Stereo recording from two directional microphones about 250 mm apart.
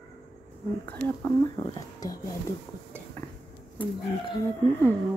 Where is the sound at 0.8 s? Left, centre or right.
Centre.